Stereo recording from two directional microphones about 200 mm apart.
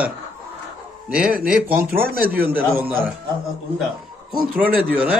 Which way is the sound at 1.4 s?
5° right (ahead or behind).